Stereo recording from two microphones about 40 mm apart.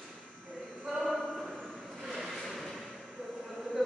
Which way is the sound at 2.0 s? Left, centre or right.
Centre.